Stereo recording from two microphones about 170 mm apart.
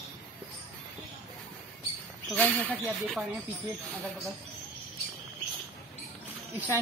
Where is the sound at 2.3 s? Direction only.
10° left (ahead or behind).